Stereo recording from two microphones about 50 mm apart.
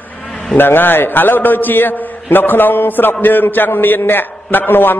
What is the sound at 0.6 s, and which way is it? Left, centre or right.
A man's voice, left.